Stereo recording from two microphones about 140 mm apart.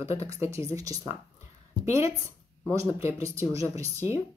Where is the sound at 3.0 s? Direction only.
20° right (ahead or behind).